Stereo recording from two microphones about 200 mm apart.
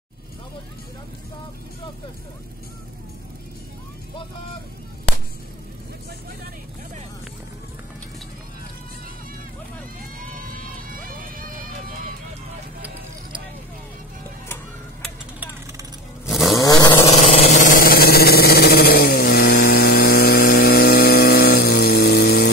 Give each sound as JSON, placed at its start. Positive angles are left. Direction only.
{"t": 10.1, "sound": "run", "side_deg": -45}
{"t": 16.3, "sound": "vehicle", "side_deg": 0}
{"t": 16.5, "sound": "vehicle", "side_deg": 20}
{"t": 17.1, "sound": "vehicle", "side_deg": 35}